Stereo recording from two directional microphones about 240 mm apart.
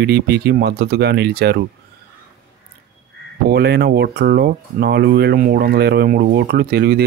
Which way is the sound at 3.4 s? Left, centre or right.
Right.